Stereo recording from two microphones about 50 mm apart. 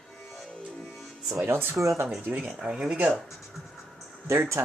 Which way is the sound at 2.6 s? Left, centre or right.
Centre.